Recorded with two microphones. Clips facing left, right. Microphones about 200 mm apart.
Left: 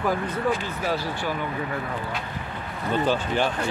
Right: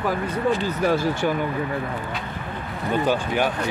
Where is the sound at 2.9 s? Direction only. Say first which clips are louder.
Right 1 dB; 15° right (ahead or behind).